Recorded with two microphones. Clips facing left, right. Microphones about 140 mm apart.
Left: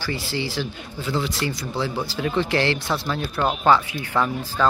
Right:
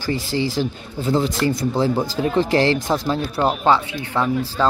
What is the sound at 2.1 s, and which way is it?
Speech, 35° right (ahead or behind).